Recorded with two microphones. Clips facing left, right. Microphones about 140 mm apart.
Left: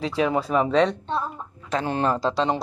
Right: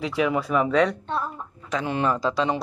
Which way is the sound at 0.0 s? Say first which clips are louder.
Left 1 dB; 30° left (ahead or behind).